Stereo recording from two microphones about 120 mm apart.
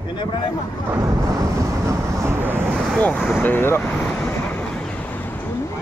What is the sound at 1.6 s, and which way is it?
Vehicle, 25° right (ahead or behind).